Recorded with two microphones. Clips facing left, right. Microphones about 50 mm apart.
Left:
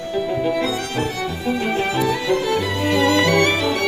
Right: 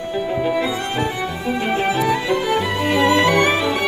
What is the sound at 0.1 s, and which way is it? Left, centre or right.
Music, centre.